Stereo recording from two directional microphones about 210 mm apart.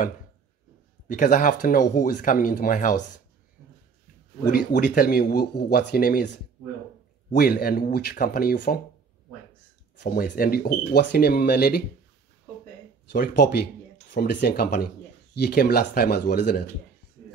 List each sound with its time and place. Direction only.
1.0 s speech: 40° left (ahead or behind)
4.5 s speech: 45° left (ahead or behind)
7.2 s speech: 45° left (ahead or behind)
9.9 s speech: 45° left (ahead or behind)
13.1 s speech: 50° left (ahead or behind)